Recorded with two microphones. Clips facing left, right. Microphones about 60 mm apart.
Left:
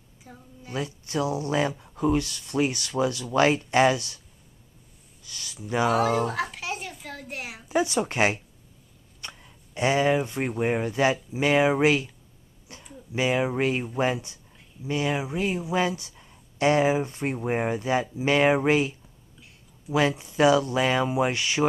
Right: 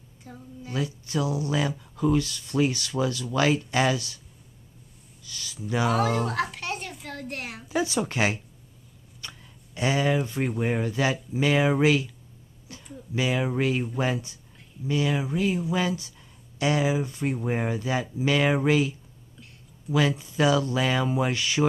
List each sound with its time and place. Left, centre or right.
0.2 s a woman's voice: centre
0.7 s speech: left
5.2 s a sound: left
5.6 s speech: left
5.9 s a child's voice: centre
7.6 s speech: left
9.2 s a sound: left
10.2 s speech: left
10.5 s speech: centre
12.7 s a sound: left
13.1 s speech: left
17.4 s speech: left